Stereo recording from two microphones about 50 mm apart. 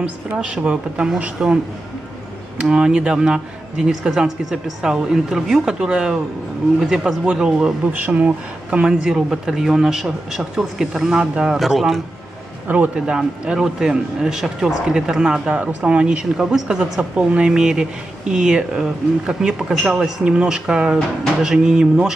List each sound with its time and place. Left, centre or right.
0.0 s speech: right
1.4 s speech: centre
2.6 s speech: centre
7.2 s speech: centre
11.5 s a man's voice: centre
12.6 s a man's voice: right
12.9 s speech: centre